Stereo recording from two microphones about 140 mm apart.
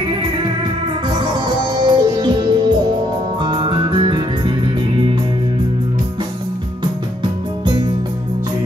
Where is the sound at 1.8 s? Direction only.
30° right (ahead or behind).